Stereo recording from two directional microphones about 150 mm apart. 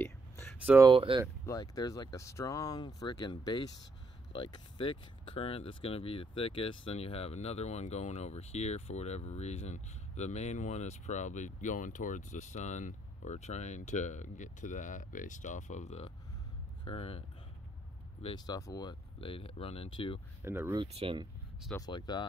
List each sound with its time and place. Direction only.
0.0 s a sound: 15° left (ahead or behind)
0.8 s speech: 35° right (ahead or behind)
1.4 s speech: 25° left (ahead or behind); by 17.2 s 40° left (ahead or behind)
18.2 s speech: 30° left (ahead or behind)
20.4 s speech: 15° right (ahead or behind)
20.7 s speech: 35° right (ahead or behind)
21.8 s speech: 30° left (ahead or behind)